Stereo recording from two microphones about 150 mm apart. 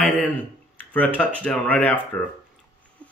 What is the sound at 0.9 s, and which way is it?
Speech, 10° left (ahead or behind).